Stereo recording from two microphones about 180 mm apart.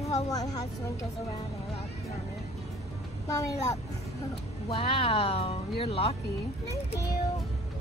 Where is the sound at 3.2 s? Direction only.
20° left (ahead or behind).